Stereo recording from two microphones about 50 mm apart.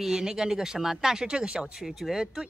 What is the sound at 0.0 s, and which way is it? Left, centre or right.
Speech, centre.